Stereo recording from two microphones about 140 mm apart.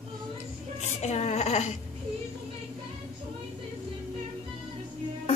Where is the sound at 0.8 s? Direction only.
50° left (ahead or behind).